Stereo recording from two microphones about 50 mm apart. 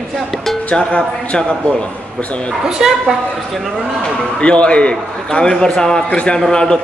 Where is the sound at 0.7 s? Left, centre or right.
Centre.